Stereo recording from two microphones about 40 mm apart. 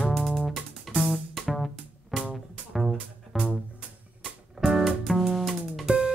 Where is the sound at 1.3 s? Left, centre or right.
Centre.